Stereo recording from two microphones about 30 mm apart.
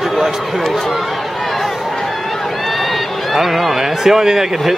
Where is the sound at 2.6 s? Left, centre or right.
Centre.